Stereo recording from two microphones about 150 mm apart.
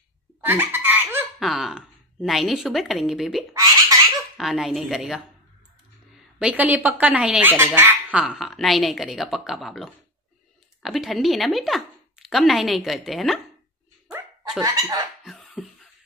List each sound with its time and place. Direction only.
0.4 s a sound: 15° right (ahead or behind)
1.4 s a woman's voice: centre (ahead or behind)
3.5 s baby laughter: 25° right (ahead or behind)
4.4 s a woman's voice: centre (ahead or behind)
6.4 s speech: 10° right (ahead or behind)
8.2 s a woman's voice: 5° right (ahead or behind)
14.6 s laughter: 25° right (ahead or behind)
15.2 s a sound: centre (ahead or behind)